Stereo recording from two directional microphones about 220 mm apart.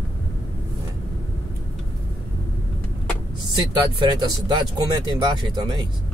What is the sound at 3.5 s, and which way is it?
Speech, 20° right (ahead or behind).